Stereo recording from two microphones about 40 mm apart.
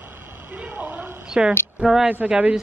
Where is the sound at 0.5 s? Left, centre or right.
Right.